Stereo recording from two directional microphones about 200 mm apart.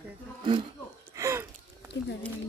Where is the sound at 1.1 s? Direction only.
15° right (ahead or behind).